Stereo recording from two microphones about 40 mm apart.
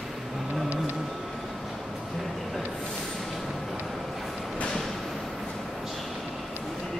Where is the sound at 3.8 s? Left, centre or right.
Centre.